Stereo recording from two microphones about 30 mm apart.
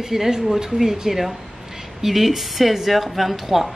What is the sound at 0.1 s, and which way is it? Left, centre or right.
Speech, centre.